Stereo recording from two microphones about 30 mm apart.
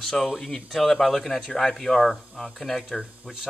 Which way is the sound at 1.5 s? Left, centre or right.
Centre.